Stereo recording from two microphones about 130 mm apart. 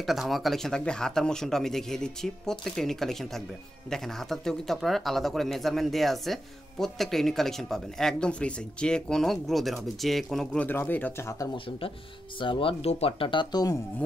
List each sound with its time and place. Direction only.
0.0 s speech: centre (ahead or behind); by 11.5 s 25° left (ahead or behind)
11.5 s speech: 45° left (ahead or behind)